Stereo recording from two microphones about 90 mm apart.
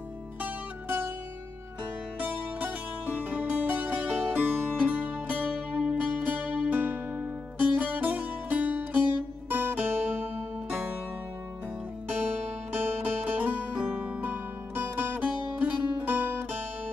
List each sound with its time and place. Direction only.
0.4 s music: 20° right (ahead or behind)
2.1 s music: 20° right (ahead or behind)
12.1 s music: 25° right (ahead or behind)